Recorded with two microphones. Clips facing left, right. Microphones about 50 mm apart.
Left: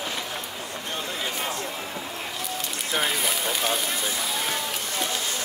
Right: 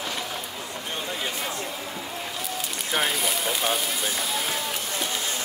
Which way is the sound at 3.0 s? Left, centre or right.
Centre.